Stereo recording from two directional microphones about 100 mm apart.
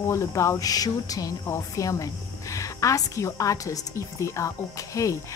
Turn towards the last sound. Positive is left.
turn(degrees=35)  # may be behind; listen again after turning